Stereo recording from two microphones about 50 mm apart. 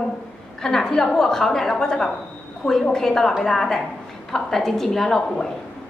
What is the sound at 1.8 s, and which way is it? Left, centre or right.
A woman's voice, centre.